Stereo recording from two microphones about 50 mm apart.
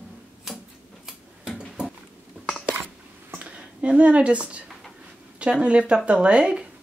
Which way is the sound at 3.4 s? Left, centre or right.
Right.